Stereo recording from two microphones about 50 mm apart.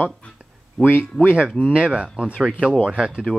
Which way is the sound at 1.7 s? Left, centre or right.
Centre.